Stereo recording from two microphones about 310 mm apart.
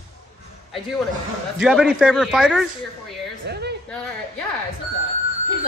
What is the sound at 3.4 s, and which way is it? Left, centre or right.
Speech, right.